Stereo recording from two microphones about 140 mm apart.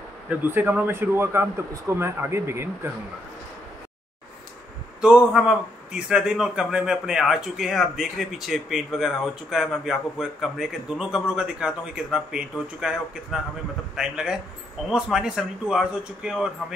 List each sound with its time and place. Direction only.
0.3 s speech: 15° right (ahead or behind)
5.0 s a man's voice: 5° right (ahead or behind)